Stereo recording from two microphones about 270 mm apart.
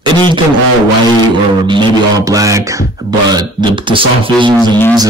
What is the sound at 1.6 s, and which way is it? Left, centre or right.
Speech, centre.